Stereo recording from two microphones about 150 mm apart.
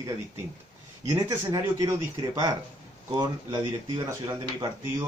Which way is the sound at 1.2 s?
20° right (ahead or behind).